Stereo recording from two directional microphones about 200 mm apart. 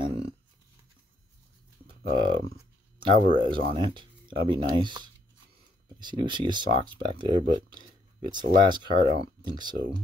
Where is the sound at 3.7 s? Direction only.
25° right (ahead or behind).